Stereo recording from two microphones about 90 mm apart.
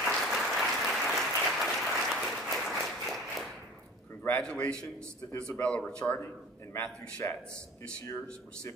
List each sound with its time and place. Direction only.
0.0 s applause: centre (ahead or behind)
4.4 s a man's voice: 10° left (ahead or behind)
6.1 s a man's voice: 25° left (ahead or behind)